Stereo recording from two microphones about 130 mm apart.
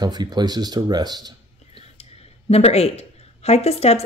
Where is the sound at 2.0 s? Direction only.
55° left (ahead or behind).